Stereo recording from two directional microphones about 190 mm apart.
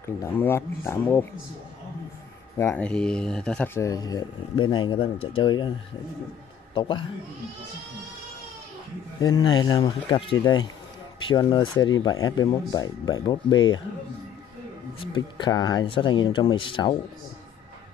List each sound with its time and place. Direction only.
0.0 s speech: 15° left (ahead or behind)
2.5 s speech: 10° left (ahead or behind)
6.7 s a man's voice: 25° left (ahead or behind)
9.2 s speech: 20° left (ahead or behind)
15.1 s speech: 25° left (ahead or behind)